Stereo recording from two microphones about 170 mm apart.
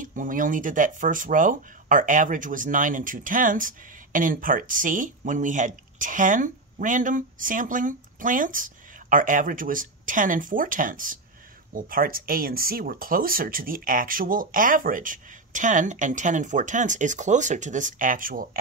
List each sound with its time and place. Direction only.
0.0 s speech: 50° right (ahead or behind)